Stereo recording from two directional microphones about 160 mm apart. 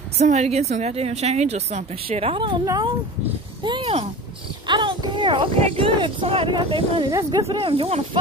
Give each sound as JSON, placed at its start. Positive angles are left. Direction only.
{"t": 0.2, "sound": "a woman's voice", "side_deg": -45}
{"t": 7.4, "sound": "a woman's voice", "side_deg": -35}